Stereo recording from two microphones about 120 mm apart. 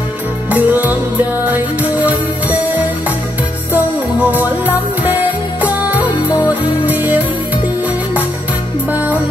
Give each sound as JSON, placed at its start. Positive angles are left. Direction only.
{"t": 0.5, "sound": "music", "side_deg": -15}
{"t": 8.9, "sound": "music", "side_deg": -15}